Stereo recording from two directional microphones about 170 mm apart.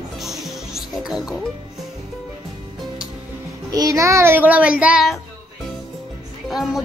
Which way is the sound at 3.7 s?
20° right (ahead or behind).